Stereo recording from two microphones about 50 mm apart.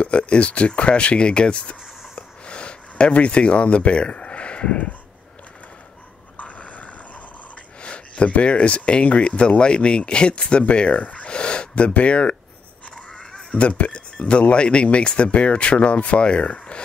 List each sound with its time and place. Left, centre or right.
0.0 s speech: left
6.3 s dog: left
7.8 s speech: left